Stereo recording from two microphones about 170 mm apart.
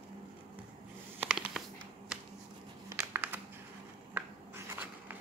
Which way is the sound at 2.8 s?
15° right (ahead or behind).